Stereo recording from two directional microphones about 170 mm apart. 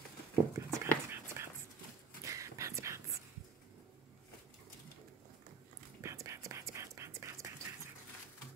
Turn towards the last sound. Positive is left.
turn(degrees=-15)  # may be behind; listen again after turning